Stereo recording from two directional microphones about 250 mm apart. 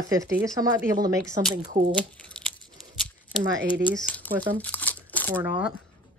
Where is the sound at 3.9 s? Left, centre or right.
Centre.